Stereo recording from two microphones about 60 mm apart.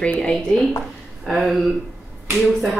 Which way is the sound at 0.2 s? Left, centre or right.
Centre.